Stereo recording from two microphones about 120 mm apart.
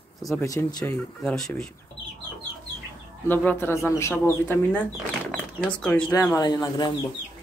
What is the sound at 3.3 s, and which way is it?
Speech, 15° left (ahead or behind).